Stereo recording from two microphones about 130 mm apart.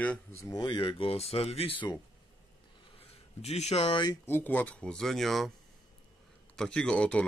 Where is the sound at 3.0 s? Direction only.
50° left (ahead or behind).